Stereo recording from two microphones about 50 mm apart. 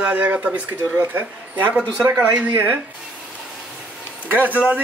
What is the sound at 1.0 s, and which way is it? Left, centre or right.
Speech, right.